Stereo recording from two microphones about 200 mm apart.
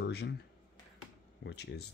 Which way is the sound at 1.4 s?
60° left (ahead or behind).